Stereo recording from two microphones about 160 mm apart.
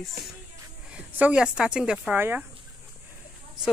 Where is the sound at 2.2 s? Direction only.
10° right (ahead or behind).